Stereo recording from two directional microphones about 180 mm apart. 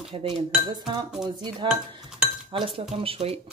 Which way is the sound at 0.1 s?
30° right (ahead or behind).